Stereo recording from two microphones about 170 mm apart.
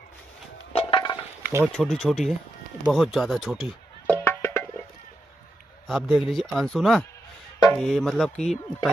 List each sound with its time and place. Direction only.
0.7 s a sound: 30° left (ahead or behind)
1.8 s a man's voice: centre (ahead or behind)
4.1 s music: 10° left (ahead or behind)
5.9 s a man's voice: centre (ahead or behind)